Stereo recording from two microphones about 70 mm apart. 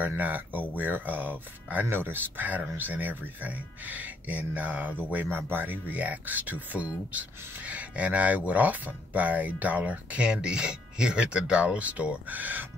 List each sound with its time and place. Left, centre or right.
0.2 s speech: right